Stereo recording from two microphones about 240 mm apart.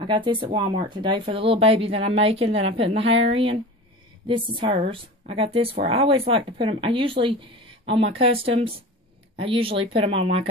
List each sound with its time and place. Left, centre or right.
0.0 s speech: centre